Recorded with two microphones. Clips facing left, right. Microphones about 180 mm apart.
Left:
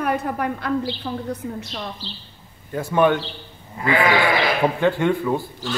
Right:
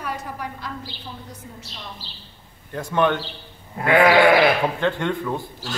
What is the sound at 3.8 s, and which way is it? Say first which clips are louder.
Sheep: even; 60° right (ahead or behind).